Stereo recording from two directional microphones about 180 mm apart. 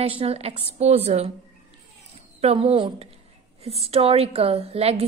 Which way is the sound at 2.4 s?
35° right (ahead or behind).